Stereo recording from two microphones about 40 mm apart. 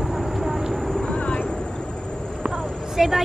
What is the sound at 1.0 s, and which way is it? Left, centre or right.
Vehicle, left.